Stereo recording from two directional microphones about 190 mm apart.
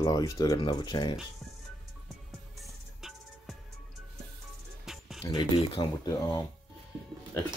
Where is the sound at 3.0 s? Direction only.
Centre (ahead or behind).